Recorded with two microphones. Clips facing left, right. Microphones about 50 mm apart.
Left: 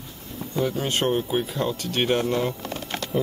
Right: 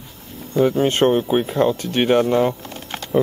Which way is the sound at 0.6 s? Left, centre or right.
Right.